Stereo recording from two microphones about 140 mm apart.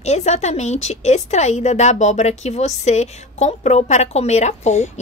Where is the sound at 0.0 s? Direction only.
55° left (ahead or behind).